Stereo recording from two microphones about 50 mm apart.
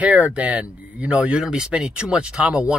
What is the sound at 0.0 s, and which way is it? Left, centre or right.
Speech, right.